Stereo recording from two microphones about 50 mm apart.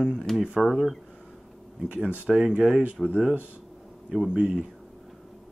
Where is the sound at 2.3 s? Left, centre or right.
Centre.